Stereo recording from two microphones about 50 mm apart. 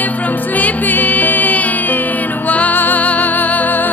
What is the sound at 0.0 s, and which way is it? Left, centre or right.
Music, left.